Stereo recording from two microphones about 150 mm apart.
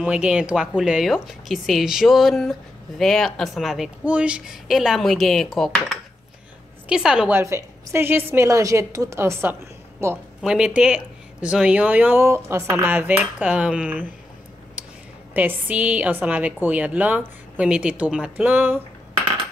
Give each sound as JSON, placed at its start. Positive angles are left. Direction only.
{"t": 0.0, "sound": "a woman's voice", "side_deg": -5}
{"t": 10.4, "sound": "a woman's voice", "side_deg": -5}
{"t": 15.3, "sound": "a woman's voice", "side_deg": -10}